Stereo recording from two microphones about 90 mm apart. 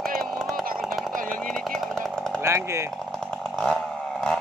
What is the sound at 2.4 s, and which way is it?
Speech, 30° right (ahead or behind).